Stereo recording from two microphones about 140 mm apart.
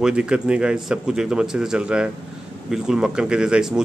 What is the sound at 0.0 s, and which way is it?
A man's voice, 5° right (ahead or behind).